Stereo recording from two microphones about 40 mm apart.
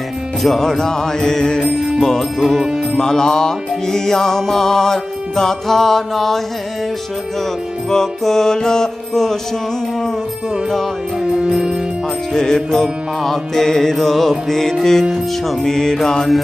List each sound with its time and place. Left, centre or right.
0.4 s music: centre
2.0 s music: centre
7.9 s music: centre
11.2 s music: centre
12.4 s music: centre